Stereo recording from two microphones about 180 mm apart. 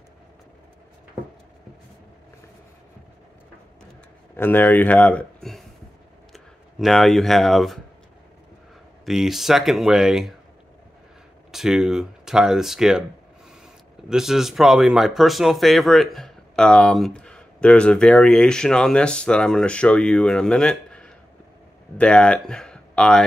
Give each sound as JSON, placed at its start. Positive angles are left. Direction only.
{"t": 4.4, "sound": "speech", "side_deg": 10}
{"t": 9.0, "sound": "speech", "side_deg": 0}
{"t": 11.5, "sound": "speech", "side_deg": 0}
{"t": 14.0, "sound": "speech", "side_deg": 0}